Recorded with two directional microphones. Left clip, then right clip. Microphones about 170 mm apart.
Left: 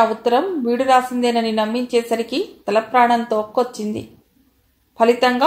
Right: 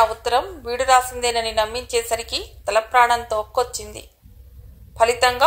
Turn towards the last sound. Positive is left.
turn(degrees=-40)  # may be behind; listen again after turning